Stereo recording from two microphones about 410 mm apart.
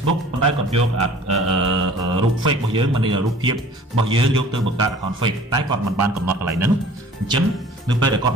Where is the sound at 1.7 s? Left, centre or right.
Centre.